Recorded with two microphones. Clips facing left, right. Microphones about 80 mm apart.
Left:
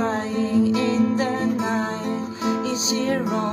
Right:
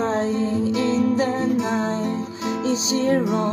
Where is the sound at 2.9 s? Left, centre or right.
Right.